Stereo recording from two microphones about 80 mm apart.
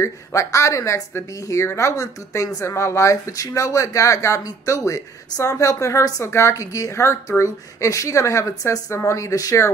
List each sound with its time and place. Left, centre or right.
0.0 s speech: left